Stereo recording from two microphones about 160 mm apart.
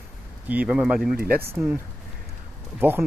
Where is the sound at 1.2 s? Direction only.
70° right (ahead or behind).